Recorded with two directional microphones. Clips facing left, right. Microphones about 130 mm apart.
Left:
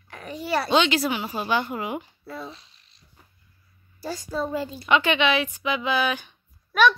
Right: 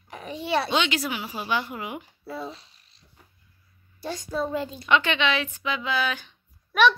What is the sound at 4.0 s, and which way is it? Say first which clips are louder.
A woman's voice: even; 5° left (ahead or behind).